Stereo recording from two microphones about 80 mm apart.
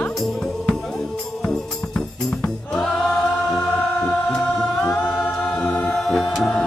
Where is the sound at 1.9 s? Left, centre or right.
Centre.